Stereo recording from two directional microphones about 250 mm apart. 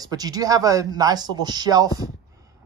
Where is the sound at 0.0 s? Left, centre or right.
Centre.